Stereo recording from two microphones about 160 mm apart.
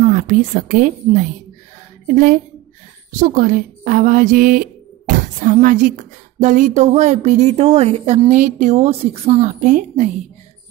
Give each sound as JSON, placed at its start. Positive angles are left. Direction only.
{"t": 0.0, "sound": "a woman's voice", "side_deg": -50}